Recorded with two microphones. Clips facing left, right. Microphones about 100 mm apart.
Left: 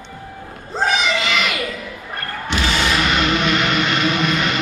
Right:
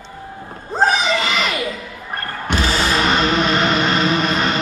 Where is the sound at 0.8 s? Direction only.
35° right (ahead or behind).